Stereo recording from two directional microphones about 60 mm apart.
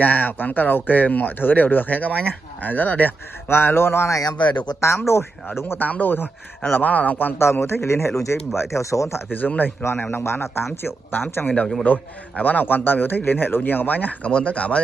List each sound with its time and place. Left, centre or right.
0.0 s speech: left
4.1 s speech: left
4.8 s speech: left
5.8 s speech: left
7.6 s speech: left
8.5 s speech: left
9.3 s a man's voice: left
10.2 s a man's voice: left; by 14.8 s centre